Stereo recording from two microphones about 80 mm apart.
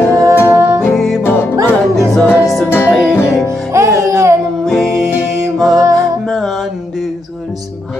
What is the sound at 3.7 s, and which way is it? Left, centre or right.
Music, right.